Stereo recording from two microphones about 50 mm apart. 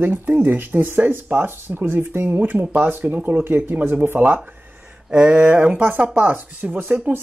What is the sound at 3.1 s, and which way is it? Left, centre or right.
Speech, right.